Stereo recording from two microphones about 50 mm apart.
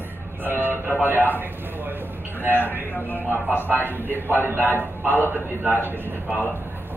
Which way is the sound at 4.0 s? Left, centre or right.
Right.